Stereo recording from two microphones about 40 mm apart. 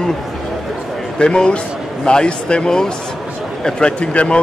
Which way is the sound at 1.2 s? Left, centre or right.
Left.